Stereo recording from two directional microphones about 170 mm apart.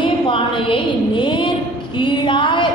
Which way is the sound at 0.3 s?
30° left (ahead or behind).